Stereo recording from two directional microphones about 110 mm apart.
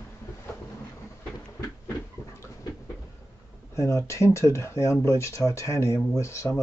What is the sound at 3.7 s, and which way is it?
Speech, 25° left (ahead or behind).